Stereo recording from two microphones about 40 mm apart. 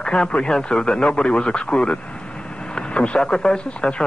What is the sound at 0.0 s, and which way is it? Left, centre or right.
Speech, left.